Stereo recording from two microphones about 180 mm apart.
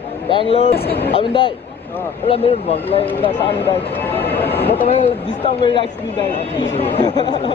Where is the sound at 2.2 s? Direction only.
35° left (ahead or behind).